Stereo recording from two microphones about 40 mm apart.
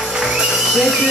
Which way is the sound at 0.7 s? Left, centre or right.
Centre.